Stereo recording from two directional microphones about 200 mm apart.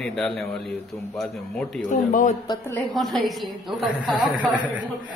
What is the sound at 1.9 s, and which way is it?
Speech, 45° left (ahead or behind).